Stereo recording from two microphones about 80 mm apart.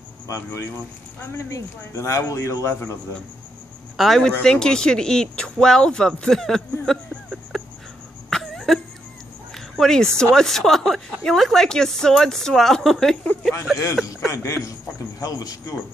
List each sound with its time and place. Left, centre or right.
0.3 s a man's voice: left
3.9 s speech: centre
4.2 s speech: centre
7.5 s a sound: centre
8.3 s cough: centre
9.5 s a woman's voice: centre
14.0 s a man's voice: left